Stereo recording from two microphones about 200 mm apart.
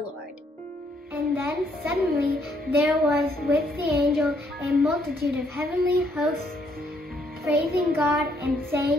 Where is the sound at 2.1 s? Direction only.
50° right (ahead or behind).